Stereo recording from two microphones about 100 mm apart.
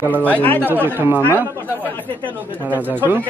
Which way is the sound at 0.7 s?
20° right (ahead or behind).